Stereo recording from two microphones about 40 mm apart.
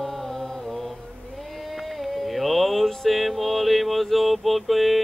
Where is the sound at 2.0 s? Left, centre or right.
Centre.